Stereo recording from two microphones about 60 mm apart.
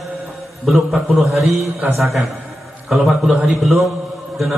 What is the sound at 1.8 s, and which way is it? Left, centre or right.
Speech, right.